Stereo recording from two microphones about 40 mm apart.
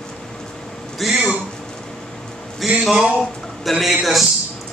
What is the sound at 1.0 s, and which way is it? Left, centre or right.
Speech, centre.